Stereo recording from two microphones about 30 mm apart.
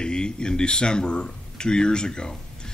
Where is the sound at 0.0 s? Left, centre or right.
Left.